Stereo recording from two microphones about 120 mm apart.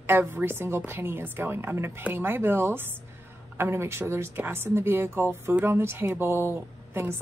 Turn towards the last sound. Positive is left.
turn(degrees=-20)  # may be behind; listen again after turning